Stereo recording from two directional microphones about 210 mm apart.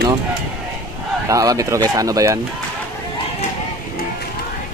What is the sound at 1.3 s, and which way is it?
Speech, 15° right (ahead or behind).